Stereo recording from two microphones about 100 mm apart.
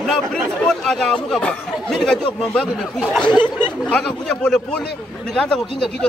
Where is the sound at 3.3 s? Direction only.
50° left (ahead or behind).